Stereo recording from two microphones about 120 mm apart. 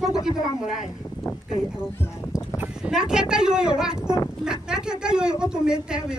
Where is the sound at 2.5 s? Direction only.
5° right (ahead or behind).